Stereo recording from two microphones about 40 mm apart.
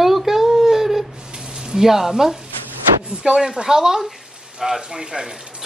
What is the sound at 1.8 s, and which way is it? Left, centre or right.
Speech, centre.